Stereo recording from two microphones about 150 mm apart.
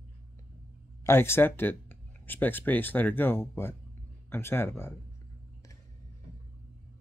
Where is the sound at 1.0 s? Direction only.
15° left (ahead or behind).